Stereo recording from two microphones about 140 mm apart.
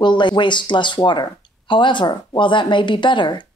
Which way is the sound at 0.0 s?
35° left (ahead or behind).